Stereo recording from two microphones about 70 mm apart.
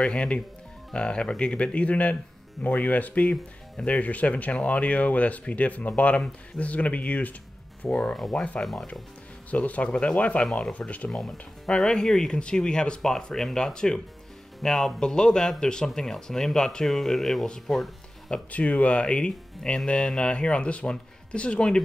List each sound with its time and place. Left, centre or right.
0.0 s a man's voice: centre
8.1 s speech: centre
9.5 s speech: left
11.1 s a man's voice: centre
18.5 s a man's voice: left